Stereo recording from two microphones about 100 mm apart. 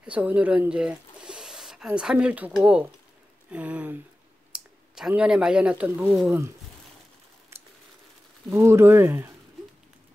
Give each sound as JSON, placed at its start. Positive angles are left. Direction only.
{"t": 0.0, "sound": "speech", "side_deg": -15}
{"t": 3.4, "sound": "a sound", "side_deg": -15}
{"t": 4.5, "sound": "speech", "side_deg": -10}
{"t": 8.5, "sound": "speech", "side_deg": -30}